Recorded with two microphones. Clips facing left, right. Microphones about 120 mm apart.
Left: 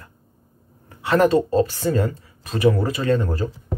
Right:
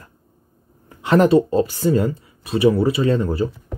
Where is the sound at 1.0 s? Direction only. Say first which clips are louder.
Right 3 dB; 20° right (ahead or behind).